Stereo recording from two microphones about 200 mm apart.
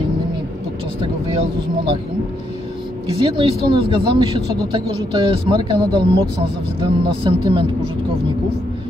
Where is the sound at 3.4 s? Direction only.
25° right (ahead or behind).